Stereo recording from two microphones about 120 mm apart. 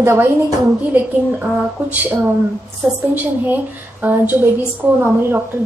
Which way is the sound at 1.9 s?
15° right (ahead or behind).